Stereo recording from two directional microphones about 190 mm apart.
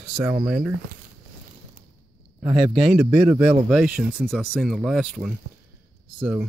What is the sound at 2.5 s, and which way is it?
Speech, 30° right (ahead or behind).